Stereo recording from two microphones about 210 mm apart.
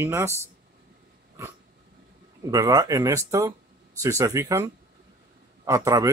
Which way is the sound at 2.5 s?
15° right (ahead or behind).